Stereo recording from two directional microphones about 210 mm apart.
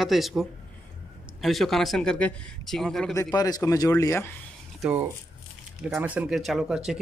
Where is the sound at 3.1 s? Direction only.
15° left (ahead or behind).